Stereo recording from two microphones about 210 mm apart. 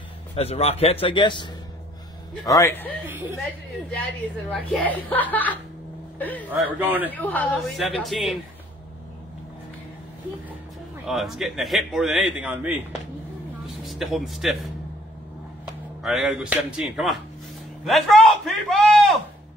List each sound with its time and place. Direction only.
0.4 s a man's voice: 30° left (ahead or behind); by 2.9 s 10° left (ahead or behind)
3.1 s a man's voice: 10° right (ahead or behind)
4.5 s a woman's voice: 5° left (ahead or behind)
6.8 s a man's voice: 10° right (ahead or behind)
7.2 s a man's voice: 10° left (ahead or behind)
11.1 s a man's voice: centre (ahead or behind)
13.8 s a man's voice: centre (ahead or behind)
16.0 s a man's voice: centre (ahead or behind)